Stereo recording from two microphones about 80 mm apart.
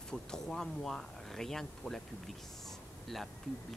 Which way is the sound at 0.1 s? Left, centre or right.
Centre.